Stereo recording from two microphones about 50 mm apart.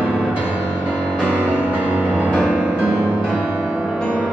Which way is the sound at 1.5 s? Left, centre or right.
Right.